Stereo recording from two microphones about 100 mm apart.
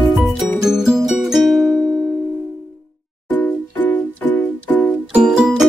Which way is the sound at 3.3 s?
15° left (ahead or behind).